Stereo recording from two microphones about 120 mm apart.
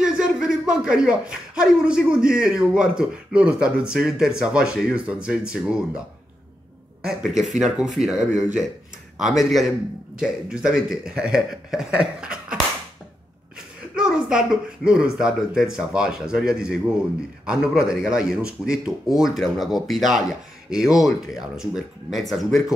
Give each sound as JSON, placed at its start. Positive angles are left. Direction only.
{"t": 0.0, "sound": "a man's voice", "side_deg": -5}
{"t": 13.9, "sound": "speech", "side_deg": -5}